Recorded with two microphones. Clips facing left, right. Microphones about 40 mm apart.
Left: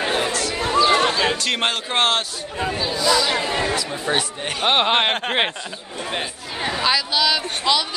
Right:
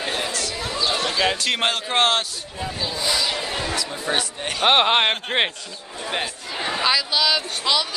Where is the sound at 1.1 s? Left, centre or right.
Centre.